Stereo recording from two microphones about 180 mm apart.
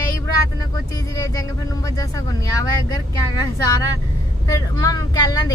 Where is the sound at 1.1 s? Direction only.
20° left (ahead or behind).